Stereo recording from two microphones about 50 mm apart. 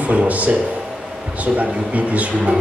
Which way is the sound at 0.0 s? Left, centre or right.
Right.